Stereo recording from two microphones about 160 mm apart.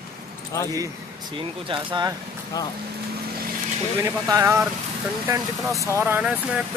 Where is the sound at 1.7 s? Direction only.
30° right (ahead or behind).